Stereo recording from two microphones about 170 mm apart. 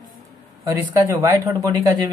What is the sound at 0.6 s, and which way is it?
Speech, 15° right (ahead or behind).